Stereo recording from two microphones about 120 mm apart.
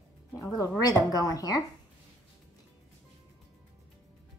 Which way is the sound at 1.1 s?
30° left (ahead or behind).